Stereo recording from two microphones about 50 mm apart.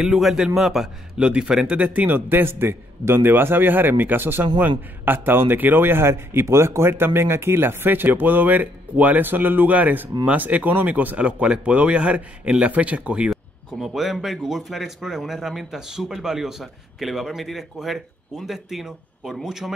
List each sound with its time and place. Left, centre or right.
0.0 s a man's voice: centre
1.2 s speech: centre
2.0 s a man's voice: right
11.1 s speech: right
13.3 s speech: centre